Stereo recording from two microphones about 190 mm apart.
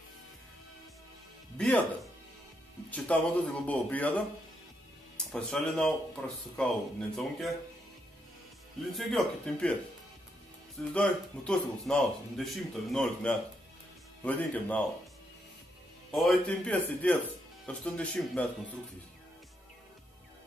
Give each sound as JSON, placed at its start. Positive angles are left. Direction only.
{"t": 2.9, "sound": "a man's voice", "side_deg": 10}
{"t": 5.3, "sound": "speech", "side_deg": 5}
{"t": 8.9, "sound": "speech", "side_deg": 5}
{"t": 10.9, "sound": "a man's voice", "side_deg": 5}
{"t": 16.1, "sound": "a man's voice", "side_deg": 0}